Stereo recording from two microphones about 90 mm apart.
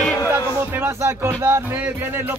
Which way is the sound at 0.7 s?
25° right (ahead or behind).